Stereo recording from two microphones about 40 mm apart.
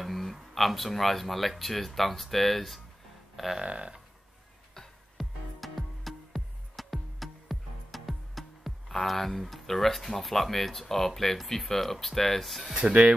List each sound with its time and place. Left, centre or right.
0.0 s speech: centre
3.6 s speech: right
5.1 s music: centre
9.0 s speech: centre
12.7 s speech: right